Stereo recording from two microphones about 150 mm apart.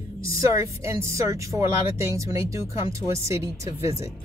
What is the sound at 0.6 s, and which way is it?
Speech, 20° right (ahead or behind).